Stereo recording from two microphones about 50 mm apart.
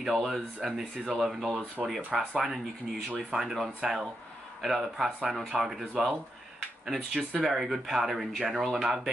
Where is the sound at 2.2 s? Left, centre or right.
Right.